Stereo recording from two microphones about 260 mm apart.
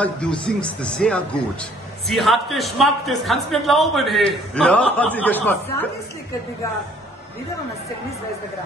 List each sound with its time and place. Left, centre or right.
0.0 s speech: centre